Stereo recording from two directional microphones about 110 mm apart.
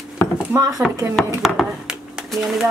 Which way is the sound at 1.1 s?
Centre (ahead or behind).